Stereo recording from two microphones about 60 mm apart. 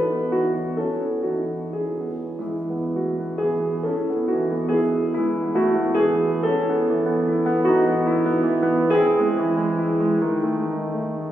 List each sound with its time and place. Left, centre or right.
5.5 s music: centre
5.9 s music: right
7.2 s music: centre
8.8 s music: centre
9.8 s music: centre